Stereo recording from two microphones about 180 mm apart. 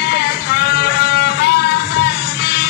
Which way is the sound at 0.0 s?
65° left (ahead or behind).